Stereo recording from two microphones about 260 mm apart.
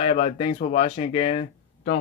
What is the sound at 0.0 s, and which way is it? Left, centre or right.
Speech, left.